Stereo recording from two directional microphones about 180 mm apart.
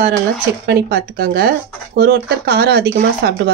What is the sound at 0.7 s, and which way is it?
Speech, 60° right (ahead or behind).